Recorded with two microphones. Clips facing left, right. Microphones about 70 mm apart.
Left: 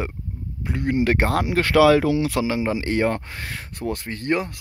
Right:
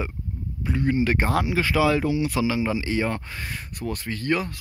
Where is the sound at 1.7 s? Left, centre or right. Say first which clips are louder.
Left 7 dB; left.